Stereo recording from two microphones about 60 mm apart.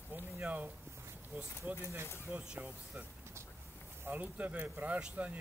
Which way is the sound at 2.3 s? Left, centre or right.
Right.